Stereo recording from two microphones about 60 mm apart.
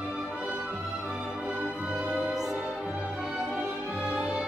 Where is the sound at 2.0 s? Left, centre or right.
Centre.